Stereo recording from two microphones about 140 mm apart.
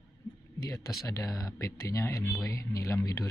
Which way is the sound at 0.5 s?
25° left (ahead or behind).